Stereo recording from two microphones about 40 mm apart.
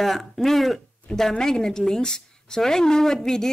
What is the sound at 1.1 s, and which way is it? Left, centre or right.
Speech, left.